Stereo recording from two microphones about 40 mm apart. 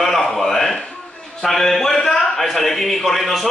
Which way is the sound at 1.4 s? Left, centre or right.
Centre.